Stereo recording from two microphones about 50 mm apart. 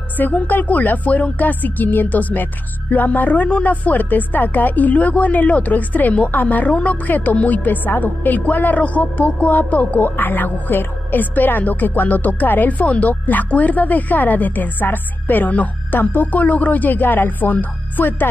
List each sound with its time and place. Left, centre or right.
0.2 s speech: left